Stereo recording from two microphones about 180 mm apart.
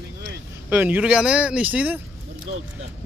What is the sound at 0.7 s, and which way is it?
Speech, 10° right (ahead or behind).